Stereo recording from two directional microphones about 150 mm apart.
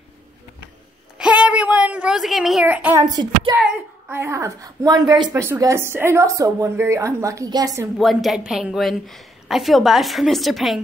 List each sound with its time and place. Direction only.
1.1 s a sound: 5° right (ahead or behind)
3.0 s speech: 30° right (ahead or behind)
3.5 s speech: 10° right (ahead or behind); by 5.3 s 30° right (ahead or behind)
5.3 s speech: 15° right (ahead or behind)
8.0 s a woman's voice: centre (ahead or behind)